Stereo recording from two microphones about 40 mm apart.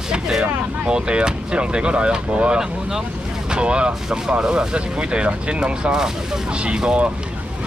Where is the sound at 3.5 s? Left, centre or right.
Right.